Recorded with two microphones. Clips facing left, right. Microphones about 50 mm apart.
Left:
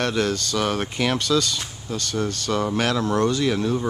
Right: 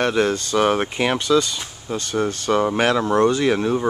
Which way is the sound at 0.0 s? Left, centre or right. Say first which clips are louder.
Right 4 dB; centre.